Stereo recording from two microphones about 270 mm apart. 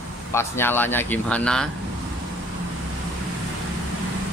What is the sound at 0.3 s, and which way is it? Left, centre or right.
Speech, centre.